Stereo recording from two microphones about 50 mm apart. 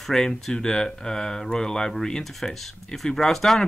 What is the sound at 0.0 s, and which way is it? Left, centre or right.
Speech, centre.